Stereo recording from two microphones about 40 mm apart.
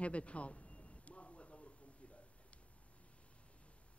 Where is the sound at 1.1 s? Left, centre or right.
Left.